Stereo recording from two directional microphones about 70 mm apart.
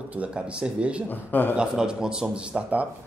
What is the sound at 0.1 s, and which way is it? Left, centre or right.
Speech, centre.